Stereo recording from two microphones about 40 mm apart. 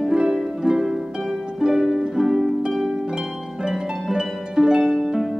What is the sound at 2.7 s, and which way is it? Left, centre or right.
Harp, centre.